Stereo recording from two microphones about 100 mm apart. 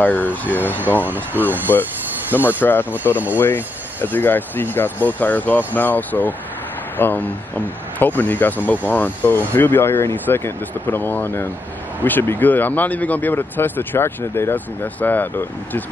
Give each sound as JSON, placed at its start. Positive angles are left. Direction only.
{"t": 0.0, "sound": "speech", "side_deg": 20}
{"t": 1.0, "sound": "speech", "side_deg": -20}
{"t": 2.3, "sound": "speech", "side_deg": 20}